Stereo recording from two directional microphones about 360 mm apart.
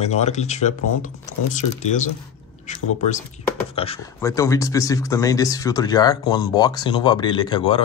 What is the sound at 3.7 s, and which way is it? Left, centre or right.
A man's voice, centre.